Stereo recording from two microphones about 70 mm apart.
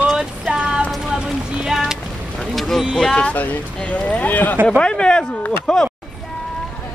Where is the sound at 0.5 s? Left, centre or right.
Centre.